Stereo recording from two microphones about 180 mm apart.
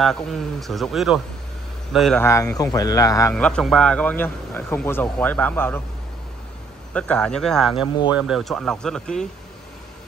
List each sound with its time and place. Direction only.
0.0 s speech: centre (ahead or behind)
2.2 s speech: 15° left (ahead or behind)
3.3 s a man's voice: 5° left (ahead or behind)
6.9 s speech: 5° left (ahead or behind)